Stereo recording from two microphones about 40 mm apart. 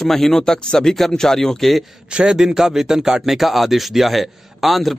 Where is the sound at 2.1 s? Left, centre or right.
Right.